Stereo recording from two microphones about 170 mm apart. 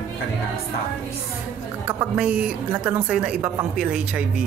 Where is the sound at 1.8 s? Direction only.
5° right (ahead or behind).